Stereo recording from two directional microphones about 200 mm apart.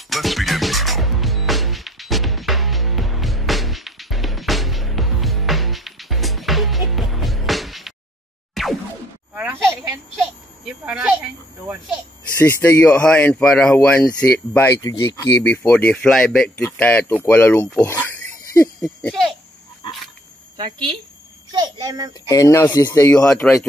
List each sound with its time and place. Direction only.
0.1 s music: centre (ahead or behind)
8.6 s a sound: centre (ahead or behind)
10.9 s cricket: 5° right (ahead or behind)
12.4 s speech: 15° left (ahead or behind)
17.8 s a sound: 10° left (ahead or behind)
20.5 s speech: 25° right (ahead or behind)
22.3 s speech: 15° left (ahead or behind)
23.2 s speech: 5° left (ahead or behind)